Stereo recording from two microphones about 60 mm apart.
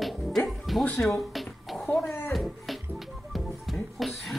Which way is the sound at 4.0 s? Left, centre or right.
Centre.